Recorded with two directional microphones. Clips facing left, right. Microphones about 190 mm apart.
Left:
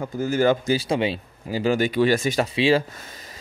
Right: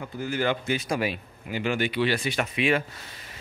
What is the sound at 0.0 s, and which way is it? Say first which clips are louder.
Speech: left 7 dB; 45° left (ahead or behind).